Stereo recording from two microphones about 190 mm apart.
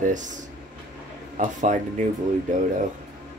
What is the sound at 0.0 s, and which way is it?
Speech, 40° right (ahead or behind).